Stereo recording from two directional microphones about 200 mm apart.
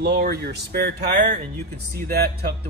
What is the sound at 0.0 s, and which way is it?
Speech, 50° right (ahead or behind).